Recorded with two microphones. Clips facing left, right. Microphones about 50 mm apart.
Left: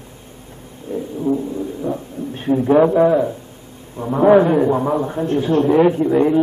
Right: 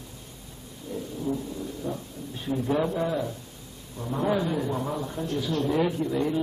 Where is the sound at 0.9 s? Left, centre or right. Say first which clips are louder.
Left 10 dB; left.